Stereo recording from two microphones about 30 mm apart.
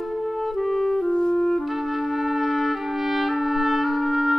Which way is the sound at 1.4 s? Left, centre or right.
Centre.